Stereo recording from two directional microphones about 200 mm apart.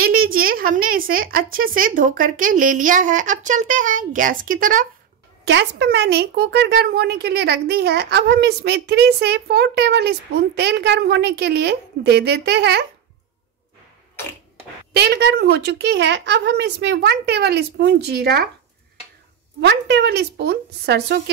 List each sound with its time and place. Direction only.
0.0 s a woman's voice: 50° right (ahead or behind)
5.5 s speech: 60° right (ahead or behind)
15.0 s speech: 55° right (ahead or behind)
19.6 s speech: 60° right (ahead or behind)